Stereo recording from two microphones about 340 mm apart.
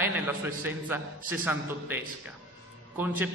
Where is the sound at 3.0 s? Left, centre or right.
Centre.